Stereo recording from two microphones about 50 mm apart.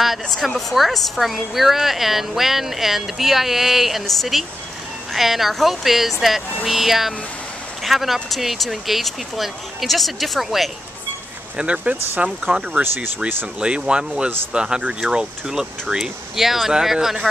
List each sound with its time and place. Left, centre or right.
0.0 s a woman's voice: centre
11.5 s speech: right
12.8 s speech: right
13.6 s speech: centre